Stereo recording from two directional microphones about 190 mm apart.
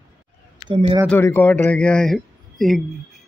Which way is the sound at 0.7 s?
30° right (ahead or behind).